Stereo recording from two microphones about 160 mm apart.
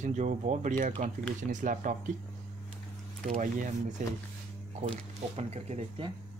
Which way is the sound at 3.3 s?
50° right (ahead or behind).